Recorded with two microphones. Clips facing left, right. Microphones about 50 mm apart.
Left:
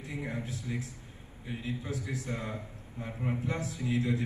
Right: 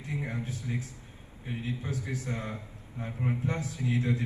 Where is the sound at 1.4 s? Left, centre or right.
Right.